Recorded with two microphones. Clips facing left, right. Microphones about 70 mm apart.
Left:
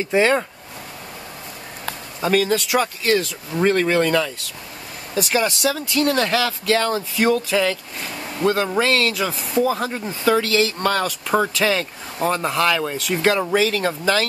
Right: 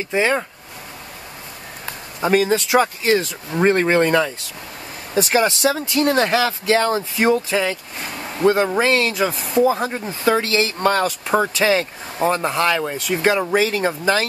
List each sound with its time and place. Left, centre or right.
0.1 s speech: centre
2.2 s speech: right
11.4 s speech: centre